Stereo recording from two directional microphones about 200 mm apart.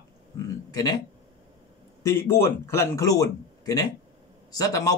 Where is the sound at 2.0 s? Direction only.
10° left (ahead or behind).